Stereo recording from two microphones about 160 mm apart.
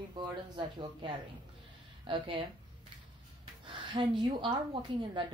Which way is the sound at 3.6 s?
30° right (ahead or behind).